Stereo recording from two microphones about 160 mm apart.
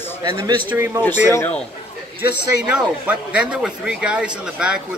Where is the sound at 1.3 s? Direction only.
15° left (ahead or behind).